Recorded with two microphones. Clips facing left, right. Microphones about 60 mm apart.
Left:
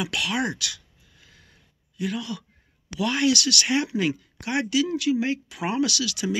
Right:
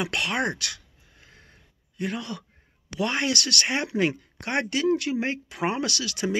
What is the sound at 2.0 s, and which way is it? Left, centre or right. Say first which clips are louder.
Speech: left 1 dB; right.